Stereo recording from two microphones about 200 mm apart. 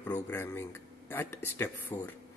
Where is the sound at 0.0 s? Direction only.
10° left (ahead or behind).